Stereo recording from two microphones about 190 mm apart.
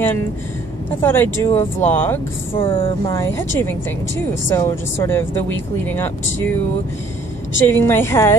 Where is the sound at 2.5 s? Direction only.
30° left (ahead or behind).